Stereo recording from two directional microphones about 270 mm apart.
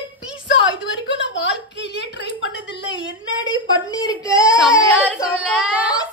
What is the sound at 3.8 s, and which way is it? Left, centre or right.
Speech, centre.